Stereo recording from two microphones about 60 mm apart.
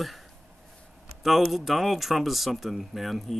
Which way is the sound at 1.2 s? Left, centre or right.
Centre.